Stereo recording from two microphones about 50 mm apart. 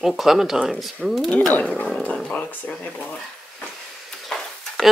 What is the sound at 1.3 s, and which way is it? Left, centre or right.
Speech, left.